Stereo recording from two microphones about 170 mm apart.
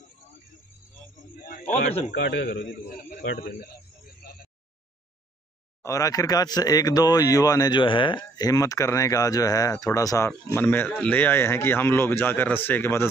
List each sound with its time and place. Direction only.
1.5 s speech: 45° left (ahead or behind)
2.1 s a man's voice: 90° left
5.8 s speech: 20° left (ahead or behind)